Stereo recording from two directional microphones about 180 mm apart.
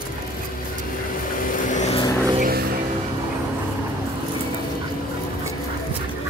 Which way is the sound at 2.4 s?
55° right (ahead or behind).